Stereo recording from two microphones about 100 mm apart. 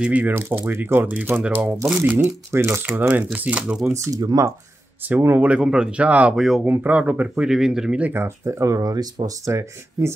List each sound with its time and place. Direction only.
0.0 s speech: 15° right (ahead or behind)
2.2 s speech: 25° right (ahead or behind); by 3.9 s 5° right (ahead or behind)
3.9 s speech: 35° right (ahead or behind)
5.0 s speech: 20° right (ahead or behind)
8.1 s speech: 25° right (ahead or behind)